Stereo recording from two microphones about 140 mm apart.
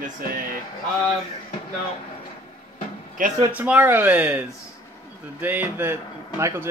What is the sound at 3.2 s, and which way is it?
Speech, 75° right (ahead or behind).